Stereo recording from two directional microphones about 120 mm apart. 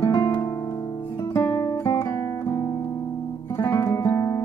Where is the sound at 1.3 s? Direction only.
20° left (ahead or behind).